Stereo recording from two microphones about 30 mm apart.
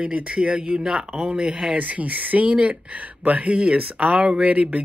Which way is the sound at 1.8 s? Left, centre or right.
Right.